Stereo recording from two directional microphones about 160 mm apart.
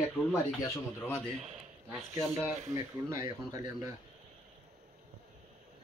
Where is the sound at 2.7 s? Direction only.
20° right (ahead or behind).